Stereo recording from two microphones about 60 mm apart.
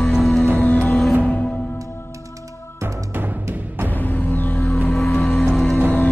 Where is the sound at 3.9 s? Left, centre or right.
Left.